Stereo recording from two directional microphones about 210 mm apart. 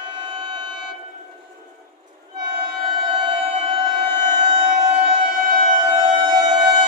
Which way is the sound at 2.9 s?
25° right (ahead or behind).